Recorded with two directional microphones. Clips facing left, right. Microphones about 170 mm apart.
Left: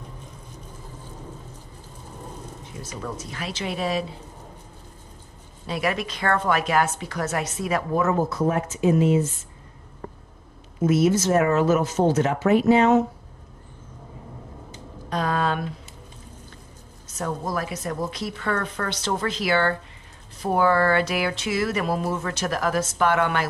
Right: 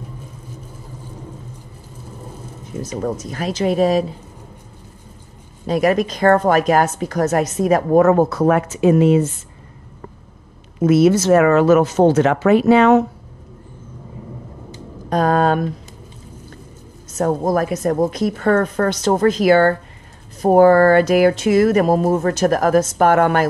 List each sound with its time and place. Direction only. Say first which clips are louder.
2.8 s a woman's voice: right 10 dB; 45° right (ahead or behind)
5.7 s a woman's voice: right 10 dB; 45° right (ahead or behind); by 9.3 s 70° right (ahead or behind)
10.8 s speech: right 7 dB; 75° right (ahead or behind)
15.0 s a woman's voice: right 9 dB; 45° right (ahead or behind)
17.2 s a woman's voice: right 10 dB; 50° right (ahead or behind)